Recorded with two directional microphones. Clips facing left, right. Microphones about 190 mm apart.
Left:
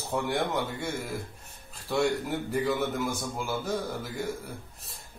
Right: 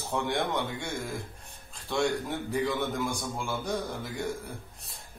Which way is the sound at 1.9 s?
5° left (ahead or behind).